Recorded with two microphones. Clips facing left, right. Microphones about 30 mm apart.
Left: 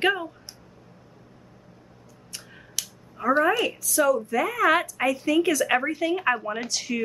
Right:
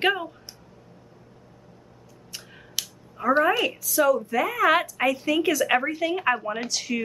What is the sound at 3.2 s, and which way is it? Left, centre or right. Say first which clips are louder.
A woman's voice: right 1 dB; centre.